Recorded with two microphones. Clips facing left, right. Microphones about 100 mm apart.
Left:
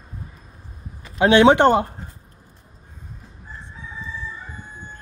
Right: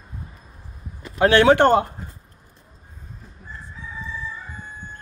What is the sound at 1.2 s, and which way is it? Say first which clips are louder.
Speech: left 1 dB; 20° left (ahead or behind).